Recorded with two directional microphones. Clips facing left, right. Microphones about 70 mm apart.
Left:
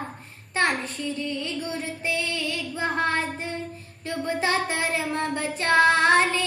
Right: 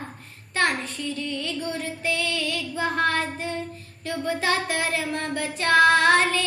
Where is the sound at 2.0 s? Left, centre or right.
Left.